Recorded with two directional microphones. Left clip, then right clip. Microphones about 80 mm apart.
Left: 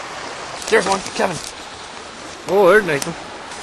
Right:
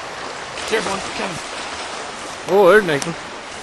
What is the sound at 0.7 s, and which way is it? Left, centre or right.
Speech, left.